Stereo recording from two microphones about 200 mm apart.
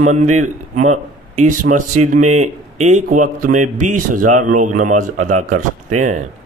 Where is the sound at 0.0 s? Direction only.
35° right (ahead or behind).